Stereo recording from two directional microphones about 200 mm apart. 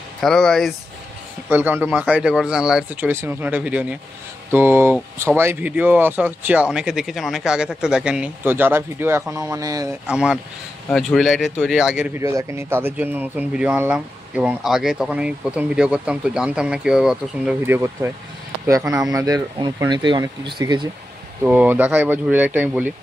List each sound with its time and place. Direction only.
0.2 s speech: centre (ahead or behind)
1.5 s speech: 10° right (ahead or behind)
10.0 s speech: 5° right (ahead or behind); by 20.9 s 20° right (ahead or behind)
21.5 s speech: 10° right (ahead or behind)